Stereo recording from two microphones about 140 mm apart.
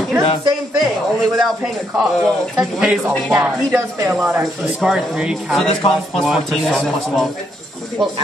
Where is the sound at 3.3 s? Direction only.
15° right (ahead or behind).